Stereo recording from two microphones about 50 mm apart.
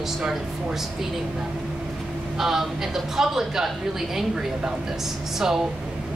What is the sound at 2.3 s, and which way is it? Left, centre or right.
Speech, centre.